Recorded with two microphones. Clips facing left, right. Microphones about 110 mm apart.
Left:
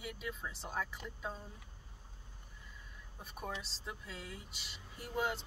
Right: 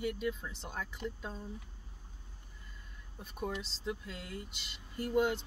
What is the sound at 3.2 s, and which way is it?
Speech, 5° left (ahead or behind).